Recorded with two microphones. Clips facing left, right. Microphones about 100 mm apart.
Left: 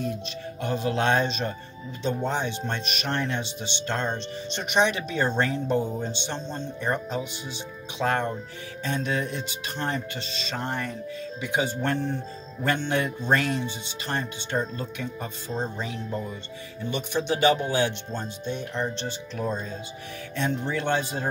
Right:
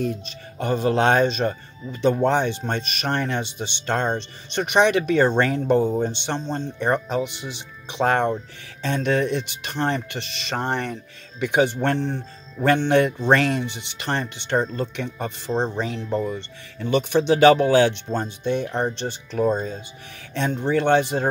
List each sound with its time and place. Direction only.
0.6 s speech: 50° right (ahead or behind)
16.9 s speech: 90° right
18.1 s speech: 60° right (ahead or behind)
20.3 s speech: 60° right (ahead or behind)